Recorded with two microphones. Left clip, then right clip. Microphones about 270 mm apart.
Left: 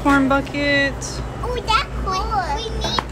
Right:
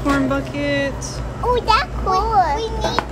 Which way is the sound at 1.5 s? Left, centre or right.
Right.